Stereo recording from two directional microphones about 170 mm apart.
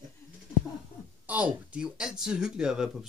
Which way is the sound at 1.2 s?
10° right (ahead or behind).